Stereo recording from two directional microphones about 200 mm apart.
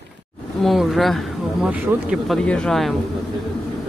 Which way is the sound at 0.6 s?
Centre (ahead or behind).